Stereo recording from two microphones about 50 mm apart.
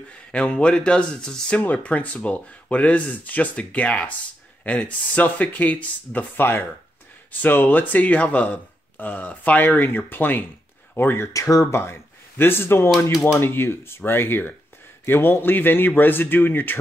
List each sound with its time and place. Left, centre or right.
0.3 s speech: left
11.1 s speech: left
11.7 s a man's voice: left